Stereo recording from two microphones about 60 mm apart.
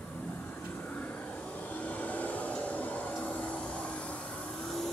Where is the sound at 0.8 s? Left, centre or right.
Left.